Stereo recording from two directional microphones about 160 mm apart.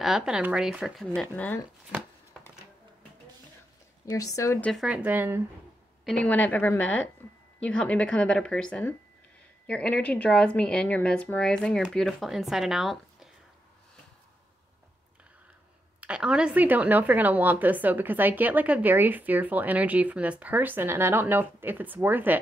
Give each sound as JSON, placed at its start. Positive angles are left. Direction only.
{"t": 0.0, "sound": "speech", "side_deg": -5}
{"t": 4.0, "sound": "speech", "side_deg": 20}
{"t": 4.6, "sound": "a woman's voice", "side_deg": 0}
{"t": 6.0, "sound": "a woman's voice", "side_deg": 5}
{"t": 16.0, "sound": "a woman's voice", "side_deg": -5}